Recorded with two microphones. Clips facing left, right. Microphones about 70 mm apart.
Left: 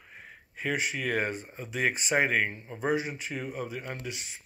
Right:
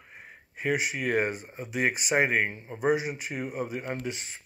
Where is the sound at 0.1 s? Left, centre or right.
Centre.